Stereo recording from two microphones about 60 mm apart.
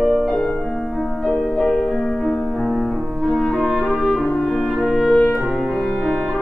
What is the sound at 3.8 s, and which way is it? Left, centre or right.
French horn, centre.